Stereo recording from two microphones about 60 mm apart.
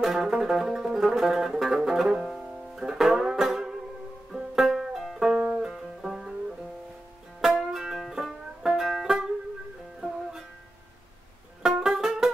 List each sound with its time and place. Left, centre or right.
0.0 s music: centre
4.3 s banjo: centre
5.3 s music: right
5.6 s music: centre
7.4 s music: centre
11.6 s music: centre